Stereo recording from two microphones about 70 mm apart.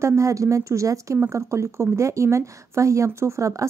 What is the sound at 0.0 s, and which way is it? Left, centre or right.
A woman's voice, right.